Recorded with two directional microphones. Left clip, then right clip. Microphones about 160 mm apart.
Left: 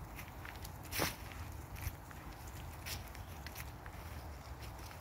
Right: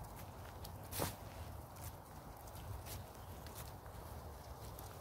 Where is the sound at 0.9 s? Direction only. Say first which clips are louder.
Left 6 dB; 55° left (ahead or behind).